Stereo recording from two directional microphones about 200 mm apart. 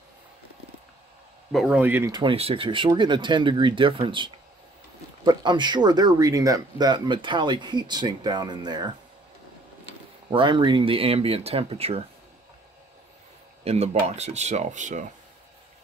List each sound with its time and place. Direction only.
1.5 s speech: centre (ahead or behind)
2.1 s speech: 30° right (ahead or behind)
10.3 s speech: 25° right (ahead or behind)
13.7 s speech: 35° right (ahead or behind)